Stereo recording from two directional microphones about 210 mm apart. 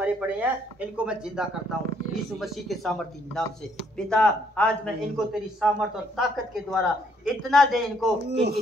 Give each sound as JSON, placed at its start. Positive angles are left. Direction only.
{"t": 0.0, "sound": "a man's voice", "side_deg": -5}
{"t": 8.3, "sound": "speech", "side_deg": -55}